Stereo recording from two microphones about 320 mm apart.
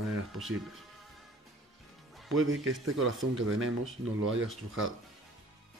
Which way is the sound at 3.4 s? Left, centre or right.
Right.